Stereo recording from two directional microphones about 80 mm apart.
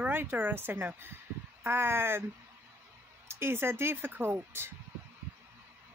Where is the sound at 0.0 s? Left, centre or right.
Right.